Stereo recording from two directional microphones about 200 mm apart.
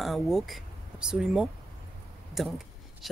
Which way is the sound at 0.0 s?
Centre (ahead or behind).